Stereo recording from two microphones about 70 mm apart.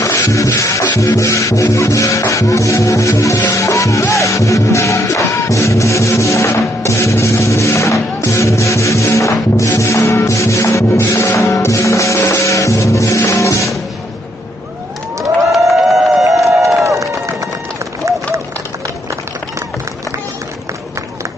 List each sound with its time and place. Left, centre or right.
0.0 s music: left
15.5 s a sound: centre
16.8 s run: right